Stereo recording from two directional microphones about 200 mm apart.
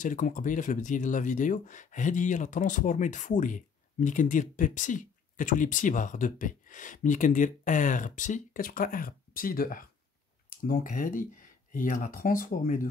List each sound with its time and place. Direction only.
0.0 s speech: 40° left (ahead or behind)